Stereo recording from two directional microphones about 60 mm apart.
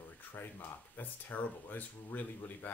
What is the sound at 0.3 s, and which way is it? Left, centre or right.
Speech, left.